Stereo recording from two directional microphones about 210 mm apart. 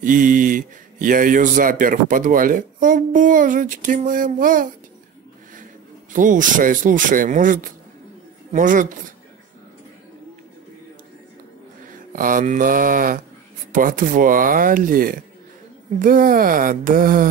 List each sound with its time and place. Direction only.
0.0 s speech: 40° right (ahead or behind)
6.1 s speech: 40° right (ahead or behind)
11.9 s mantra: 40° right (ahead or behind)
13.7 s speech: 40° right (ahead or behind)